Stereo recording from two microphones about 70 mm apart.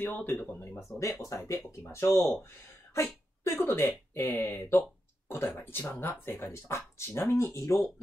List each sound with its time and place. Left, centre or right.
0.0 s speech: left
0.7 s speech: left